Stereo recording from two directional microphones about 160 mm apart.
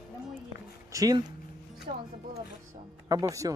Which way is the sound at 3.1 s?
20° right (ahead or behind).